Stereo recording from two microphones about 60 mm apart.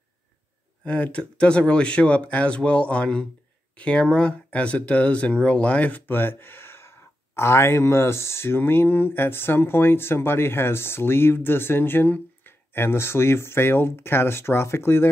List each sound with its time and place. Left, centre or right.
0.8 s speech: left